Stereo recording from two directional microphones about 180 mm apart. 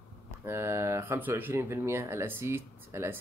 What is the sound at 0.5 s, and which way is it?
Speech, 15° right (ahead or behind).